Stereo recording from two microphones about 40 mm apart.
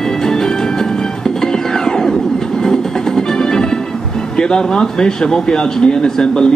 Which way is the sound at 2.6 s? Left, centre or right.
Centre.